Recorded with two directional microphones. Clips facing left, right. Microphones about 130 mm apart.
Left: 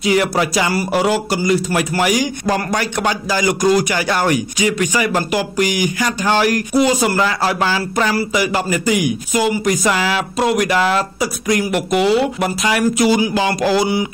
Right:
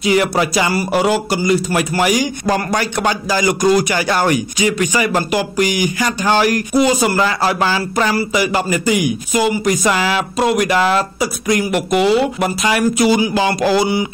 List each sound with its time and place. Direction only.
0.0 s speech: 25° right (ahead or behind)